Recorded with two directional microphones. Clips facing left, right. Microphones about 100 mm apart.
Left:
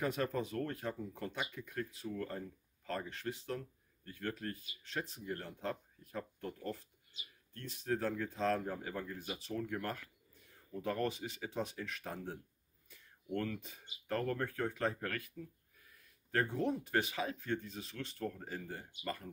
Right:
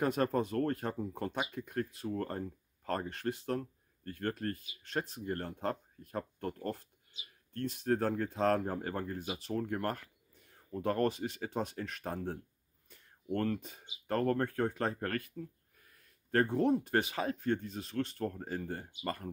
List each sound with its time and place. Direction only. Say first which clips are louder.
0.0 s speech: right 5 dB; 50° right (ahead or behind)
12.9 s a sound: right 4 dB; 45° right (ahead or behind)
14.0 s speech: right 5 dB; 40° right (ahead or behind)